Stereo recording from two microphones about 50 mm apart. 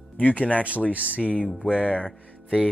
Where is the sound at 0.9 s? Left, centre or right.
Right.